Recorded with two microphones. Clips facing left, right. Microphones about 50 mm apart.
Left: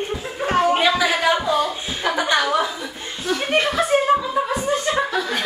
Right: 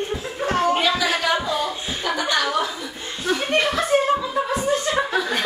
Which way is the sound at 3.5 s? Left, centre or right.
Centre.